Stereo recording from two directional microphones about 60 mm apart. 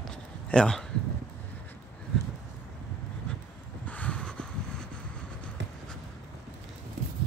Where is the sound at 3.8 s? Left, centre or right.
Left.